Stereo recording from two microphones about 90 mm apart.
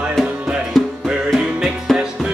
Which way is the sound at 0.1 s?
Centre (ahead or behind).